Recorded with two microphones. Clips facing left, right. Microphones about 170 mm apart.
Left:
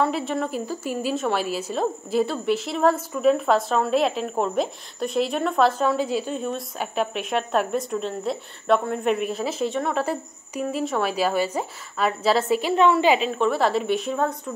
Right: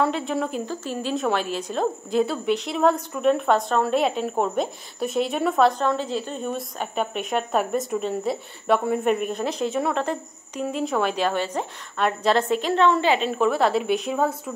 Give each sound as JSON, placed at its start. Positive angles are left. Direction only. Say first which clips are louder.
{"t": 0.0, "sound": "speech", "louder": "even", "side_deg": 0}
{"t": 13.3, "sound": "speech", "louder": "right 1 dB", "side_deg": 0}